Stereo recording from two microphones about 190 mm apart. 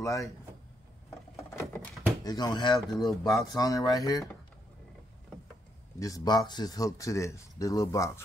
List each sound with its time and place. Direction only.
0.0 s speech: 15° left (ahead or behind)
1.3 s a sound: 15° left (ahead or behind)
3.1 s speech: centre (ahead or behind)
3.4 s speech: 20° left (ahead or behind)
5.9 s speech: 20° left (ahead or behind)